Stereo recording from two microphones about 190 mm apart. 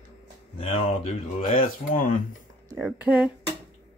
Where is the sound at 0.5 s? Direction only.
30° left (ahead or behind).